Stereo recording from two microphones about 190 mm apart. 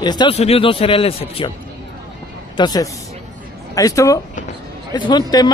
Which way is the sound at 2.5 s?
20° left (ahead or behind).